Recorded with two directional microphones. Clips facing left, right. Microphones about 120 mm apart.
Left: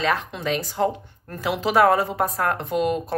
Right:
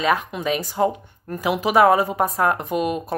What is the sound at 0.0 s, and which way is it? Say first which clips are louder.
Speech: right 3 dB; 10° right (ahead or behind).